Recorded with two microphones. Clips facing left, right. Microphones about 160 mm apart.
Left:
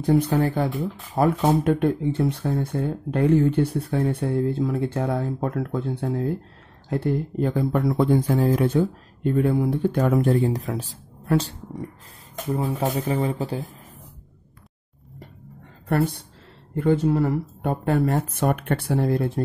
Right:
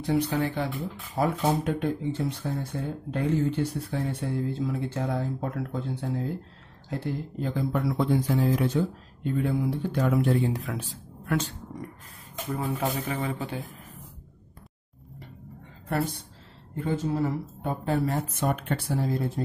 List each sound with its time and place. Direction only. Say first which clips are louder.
0.0 s speech: left 6 dB; 45° left (ahead or behind)
15.9 s speech: left 6 dB; 60° left (ahead or behind)